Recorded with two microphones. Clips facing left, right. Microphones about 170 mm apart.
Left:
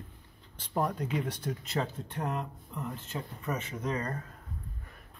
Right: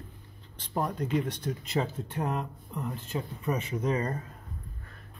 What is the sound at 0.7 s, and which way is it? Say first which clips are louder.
Speech: right 2 dB; centre (ahead or behind).